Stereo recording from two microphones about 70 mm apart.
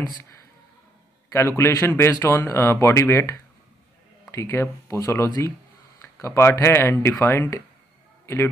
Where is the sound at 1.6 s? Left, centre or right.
Left.